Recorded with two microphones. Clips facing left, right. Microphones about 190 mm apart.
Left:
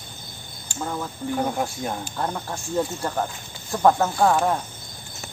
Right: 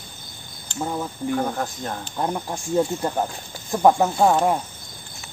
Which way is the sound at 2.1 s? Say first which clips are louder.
Right 2 dB; 15° right (ahead or behind).